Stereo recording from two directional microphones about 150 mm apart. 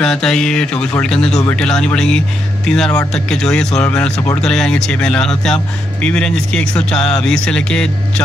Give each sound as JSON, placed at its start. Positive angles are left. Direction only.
{"t": 0.0, "sound": "music", "side_deg": 5}
{"t": 6.0, "sound": "speech", "side_deg": 5}